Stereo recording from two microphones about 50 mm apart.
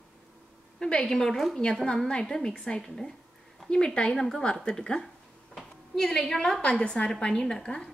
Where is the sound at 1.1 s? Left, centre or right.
Centre.